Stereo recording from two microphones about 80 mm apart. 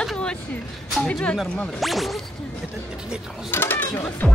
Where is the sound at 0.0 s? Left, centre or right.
Centre.